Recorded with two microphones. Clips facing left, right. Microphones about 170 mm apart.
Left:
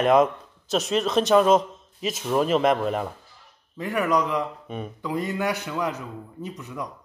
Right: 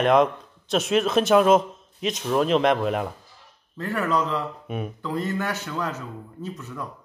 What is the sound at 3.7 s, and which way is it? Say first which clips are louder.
Speech: left 1 dB; 15° left (ahead or behind).